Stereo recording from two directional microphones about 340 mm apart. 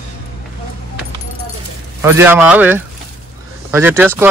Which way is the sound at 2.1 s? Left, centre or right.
Centre.